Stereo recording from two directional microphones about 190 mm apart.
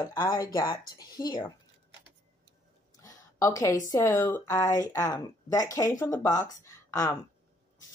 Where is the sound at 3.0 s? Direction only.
15° left (ahead or behind).